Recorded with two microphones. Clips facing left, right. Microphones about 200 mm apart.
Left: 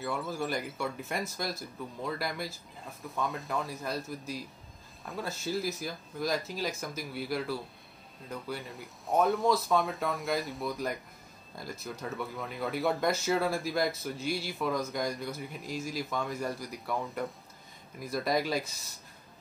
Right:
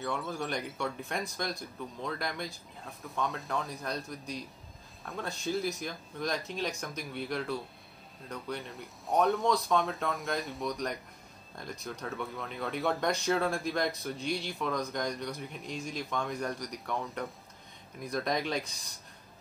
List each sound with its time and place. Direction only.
0.0 s speech: centre (ahead or behind)